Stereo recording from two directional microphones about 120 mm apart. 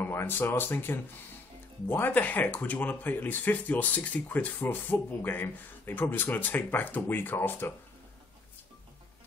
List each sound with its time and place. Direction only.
0.0 s speech: 20° left (ahead or behind)